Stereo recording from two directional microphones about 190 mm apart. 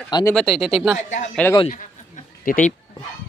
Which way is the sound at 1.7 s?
40° left (ahead or behind).